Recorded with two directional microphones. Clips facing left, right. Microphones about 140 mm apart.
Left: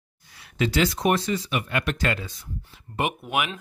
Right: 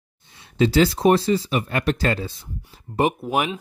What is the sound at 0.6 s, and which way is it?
Speech, 30° right (ahead or behind).